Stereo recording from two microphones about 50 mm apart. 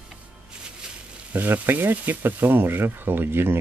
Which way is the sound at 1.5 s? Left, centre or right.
Right.